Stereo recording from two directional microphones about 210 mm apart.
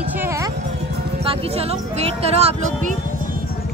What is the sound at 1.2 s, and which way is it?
Speech, 30° right (ahead or behind).